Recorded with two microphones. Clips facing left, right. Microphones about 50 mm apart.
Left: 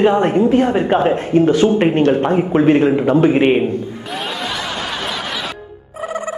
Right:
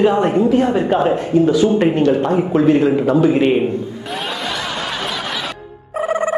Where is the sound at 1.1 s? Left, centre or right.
Left.